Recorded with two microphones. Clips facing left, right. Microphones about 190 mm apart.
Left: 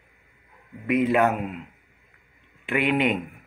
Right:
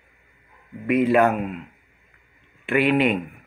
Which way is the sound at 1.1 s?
20° left (ahead or behind).